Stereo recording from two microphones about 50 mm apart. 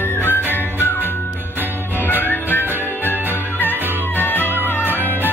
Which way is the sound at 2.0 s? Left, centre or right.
Left.